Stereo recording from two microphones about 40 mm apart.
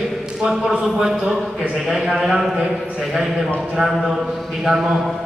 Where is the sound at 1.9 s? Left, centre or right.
Centre.